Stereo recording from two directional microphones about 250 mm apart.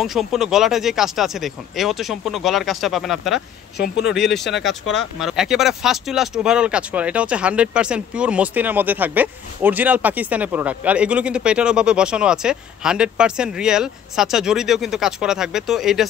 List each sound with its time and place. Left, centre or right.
0.0 s speech: centre
3.7 s speech: left
4.1 s speech: centre